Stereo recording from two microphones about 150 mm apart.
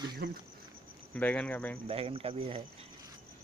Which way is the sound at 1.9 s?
40° right (ahead or behind).